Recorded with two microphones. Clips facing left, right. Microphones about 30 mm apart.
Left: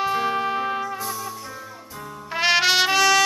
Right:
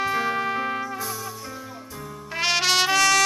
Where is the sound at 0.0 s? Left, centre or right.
Centre.